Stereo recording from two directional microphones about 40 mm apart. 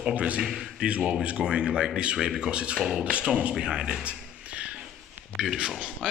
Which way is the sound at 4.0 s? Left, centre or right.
Right.